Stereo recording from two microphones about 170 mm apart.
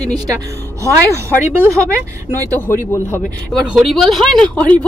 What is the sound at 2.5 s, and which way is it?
Speech, 15° left (ahead or behind).